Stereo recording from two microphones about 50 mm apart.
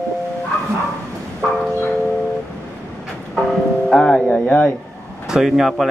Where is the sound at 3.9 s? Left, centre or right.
Centre.